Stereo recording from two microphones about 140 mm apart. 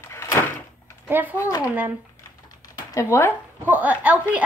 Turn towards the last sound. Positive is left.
turn(degrees=-10)  # may be behind; listen again after turning